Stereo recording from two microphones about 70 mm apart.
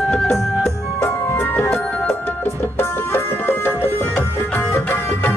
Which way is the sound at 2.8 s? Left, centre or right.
Left.